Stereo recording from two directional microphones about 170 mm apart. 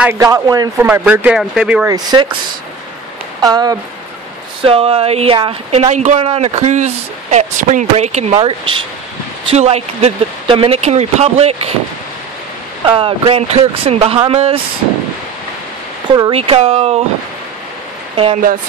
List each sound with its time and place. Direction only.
0.0 s speech: 15° right (ahead or behind)
0.8 s speech: 10° right (ahead or behind)
1.9 s speech: 25° right (ahead or behind)
3.3 s speech: 25° right (ahead or behind)
4.6 s speech: 35° right (ahead or behind)
13.3 s speech: 35° right (ahead or behind)
16.1 s speech: 30° right (ahead or behind)
18.1 s speech: 35° right (ahead or behind)